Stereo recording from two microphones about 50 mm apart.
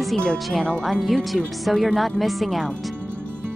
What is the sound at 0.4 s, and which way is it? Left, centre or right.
Speech, centre.